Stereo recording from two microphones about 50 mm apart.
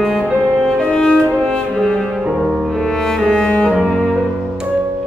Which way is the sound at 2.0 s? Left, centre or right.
Centre.